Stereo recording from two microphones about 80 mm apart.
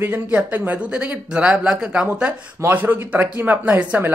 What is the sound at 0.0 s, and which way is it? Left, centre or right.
Speech, right.